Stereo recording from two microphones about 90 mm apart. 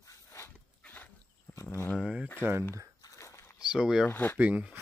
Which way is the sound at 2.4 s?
25° right (ahead or behind).